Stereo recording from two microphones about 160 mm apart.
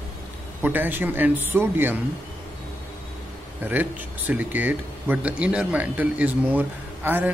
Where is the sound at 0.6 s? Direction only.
10° right (ahead or behind).